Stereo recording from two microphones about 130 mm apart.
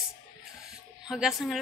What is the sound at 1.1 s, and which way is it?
Speech, 5° right (ahead or behind).